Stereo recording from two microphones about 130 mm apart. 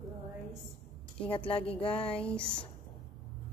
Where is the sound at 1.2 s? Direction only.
45° left (ahead or behind).